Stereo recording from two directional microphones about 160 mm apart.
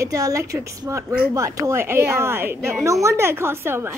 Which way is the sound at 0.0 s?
20° right (ahead or behind).